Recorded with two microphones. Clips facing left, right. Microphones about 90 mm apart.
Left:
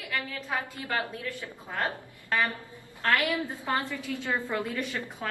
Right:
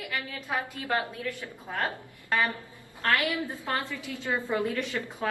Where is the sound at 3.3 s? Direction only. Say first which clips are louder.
Left 1 dB; 20° left (ahead or behind).